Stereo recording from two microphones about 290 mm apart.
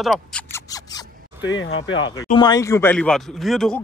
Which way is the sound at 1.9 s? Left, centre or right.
Centre.